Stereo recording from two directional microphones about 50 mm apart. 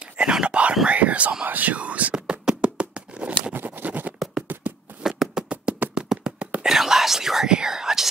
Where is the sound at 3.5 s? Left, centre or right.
Right.